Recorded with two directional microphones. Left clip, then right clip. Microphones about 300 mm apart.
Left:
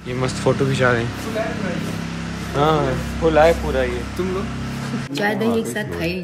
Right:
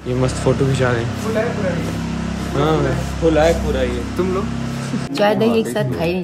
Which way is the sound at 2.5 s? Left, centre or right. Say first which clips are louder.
Even; centre.